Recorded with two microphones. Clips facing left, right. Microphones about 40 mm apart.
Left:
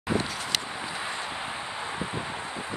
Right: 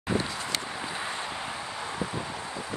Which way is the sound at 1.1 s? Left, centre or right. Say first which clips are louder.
Left 1 dB; centre.